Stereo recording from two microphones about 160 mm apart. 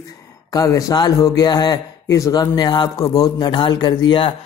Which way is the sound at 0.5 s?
20° left (ahead or behind).